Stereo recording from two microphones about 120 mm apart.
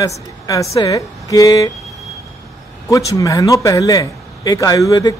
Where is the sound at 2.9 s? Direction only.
30° left (ahead or behind).